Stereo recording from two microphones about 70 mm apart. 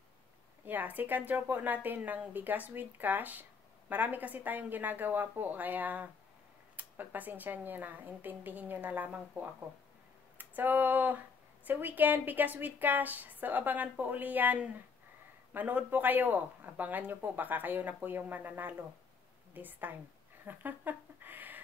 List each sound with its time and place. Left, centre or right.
0.7 s speech: right
10.3 s a sound: right
11.6 s speech: right